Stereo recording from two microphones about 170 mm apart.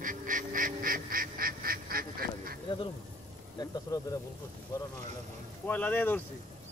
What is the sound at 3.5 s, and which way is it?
Speech, 20° left (ahead or behind).